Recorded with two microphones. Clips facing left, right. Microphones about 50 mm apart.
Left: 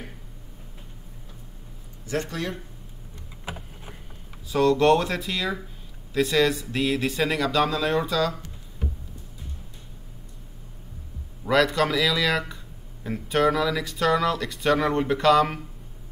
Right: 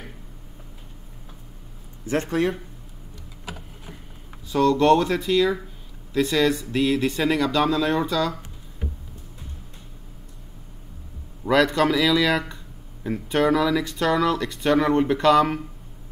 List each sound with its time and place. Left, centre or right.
2.0 s speech: right
3.4 s typing: left
4.5 s speech: centre
11.4 s speech: centre